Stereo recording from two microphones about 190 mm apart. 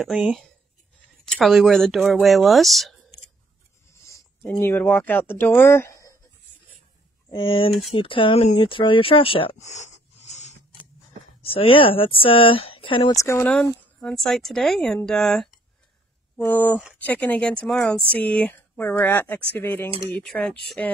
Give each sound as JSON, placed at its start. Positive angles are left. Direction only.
{"t": 0.0, "sound": "speech", "side_deg": 0}
{"t": 3.9, "sound": "a sound", "side_deg": 15}
{"t": 4.5, "sound": "speech", "side_deg": 10}
{"t": 7.2, "sound": "speech", "side_deg": 25}
{"t": 13.2, "sound": "speech", "side_deg": 10}